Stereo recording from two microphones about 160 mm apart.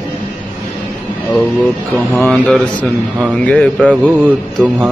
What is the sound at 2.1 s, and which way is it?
Speech, 10° left (ahead or behind).